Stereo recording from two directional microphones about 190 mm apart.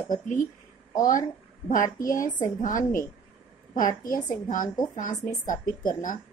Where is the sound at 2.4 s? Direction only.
45° left (ahead or behind).